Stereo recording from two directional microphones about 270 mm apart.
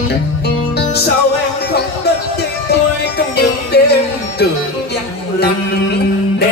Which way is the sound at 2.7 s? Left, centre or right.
Left.